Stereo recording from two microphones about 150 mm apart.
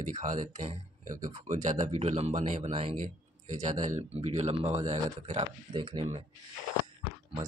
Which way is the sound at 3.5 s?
55° right (ahead or behind).